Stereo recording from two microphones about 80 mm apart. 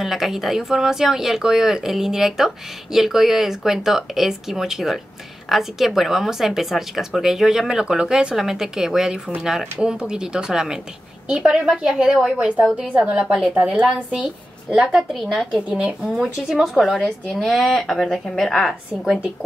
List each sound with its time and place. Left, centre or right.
0.0 s a woman's voice: centre